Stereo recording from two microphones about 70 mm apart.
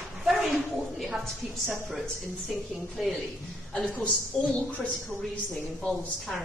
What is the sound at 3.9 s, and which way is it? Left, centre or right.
A woman's voice, centre.